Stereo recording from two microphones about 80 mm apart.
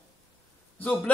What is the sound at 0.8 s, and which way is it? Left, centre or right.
Speech, centre.